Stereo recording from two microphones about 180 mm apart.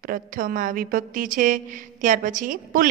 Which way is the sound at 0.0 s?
50° right (ahead or behind).